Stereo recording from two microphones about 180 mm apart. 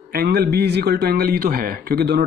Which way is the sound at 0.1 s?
60° right (ahead or behind).